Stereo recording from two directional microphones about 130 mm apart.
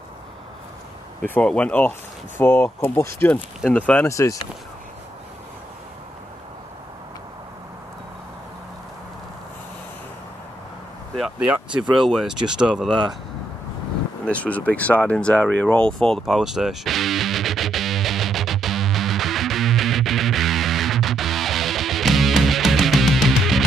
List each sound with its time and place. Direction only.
1.2 s speech: 10° left (ahead or behind)
4.1 s speech: 25° left (ahead or behind)
11.1 s speech: 5° right (ahead or behind)
14.2 s a sound: 10° left (ahead or behind)